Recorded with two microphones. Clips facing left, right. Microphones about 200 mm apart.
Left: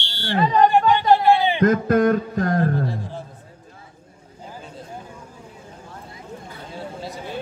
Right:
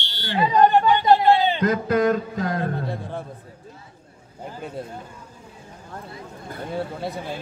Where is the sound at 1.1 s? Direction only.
15° left (ahead or behind).